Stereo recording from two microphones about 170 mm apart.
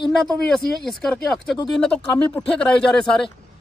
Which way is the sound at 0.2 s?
5° left (ahead or behind).